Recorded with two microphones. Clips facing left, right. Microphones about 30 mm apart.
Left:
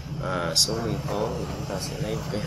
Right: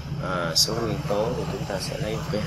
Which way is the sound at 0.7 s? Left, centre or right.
Right.